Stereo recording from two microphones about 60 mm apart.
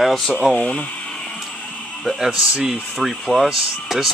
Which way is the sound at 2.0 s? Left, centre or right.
Centre.